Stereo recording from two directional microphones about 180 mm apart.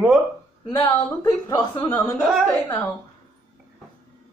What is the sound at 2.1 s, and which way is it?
Speech, centre (ahead or behind).